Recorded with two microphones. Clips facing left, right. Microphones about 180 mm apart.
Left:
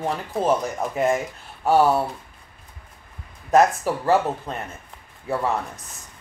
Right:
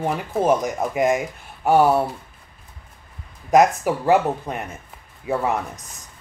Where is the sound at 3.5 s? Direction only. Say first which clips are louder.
Right 2 dB; 15° right (ahead or behind).